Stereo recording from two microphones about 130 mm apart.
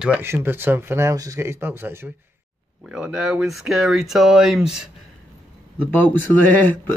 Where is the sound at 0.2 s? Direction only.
15° right (ahead or behind).